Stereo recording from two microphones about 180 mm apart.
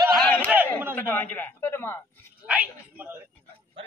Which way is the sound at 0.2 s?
10° left (ahead or behind).